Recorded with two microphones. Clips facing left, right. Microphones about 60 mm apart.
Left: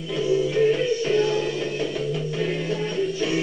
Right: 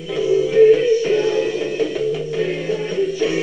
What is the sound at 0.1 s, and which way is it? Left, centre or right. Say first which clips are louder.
Music: right 5 dB; centre.